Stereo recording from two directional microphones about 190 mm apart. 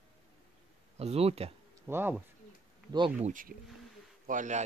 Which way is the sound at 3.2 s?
40° right (ahead or behind).